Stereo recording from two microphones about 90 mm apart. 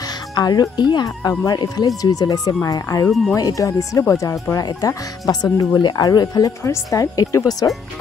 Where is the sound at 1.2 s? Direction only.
45° left (ahead or behind).